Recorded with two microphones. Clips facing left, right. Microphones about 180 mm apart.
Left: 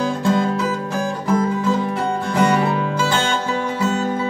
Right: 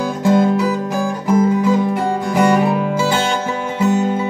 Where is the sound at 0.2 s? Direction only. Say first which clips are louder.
Right 8 dB; 15° right (ahead or behind).